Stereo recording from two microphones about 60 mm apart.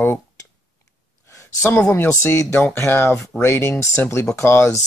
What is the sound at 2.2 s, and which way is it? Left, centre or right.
Speech, left.